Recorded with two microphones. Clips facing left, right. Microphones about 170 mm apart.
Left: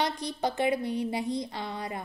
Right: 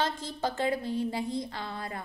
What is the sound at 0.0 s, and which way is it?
A woman's voice, 15° left (ahead or behind).